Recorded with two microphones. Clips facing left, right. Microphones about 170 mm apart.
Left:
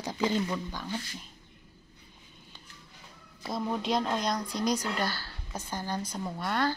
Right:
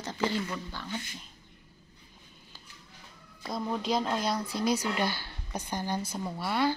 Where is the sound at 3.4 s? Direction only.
5° left (ahead or behind).